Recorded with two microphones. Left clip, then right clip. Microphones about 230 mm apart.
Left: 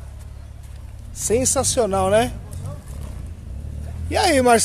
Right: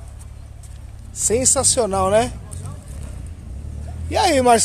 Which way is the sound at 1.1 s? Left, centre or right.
Centre.